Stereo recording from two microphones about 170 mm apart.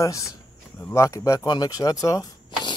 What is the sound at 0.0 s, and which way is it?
Speech, 20° left (ahead or behind).